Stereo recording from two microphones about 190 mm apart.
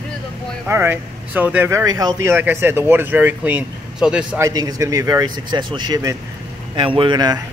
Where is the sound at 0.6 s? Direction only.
10° right (ahead or behind).